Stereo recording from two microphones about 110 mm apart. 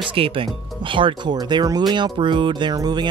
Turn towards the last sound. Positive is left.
turn(degrees=-40)  # may be behind; listen again after turning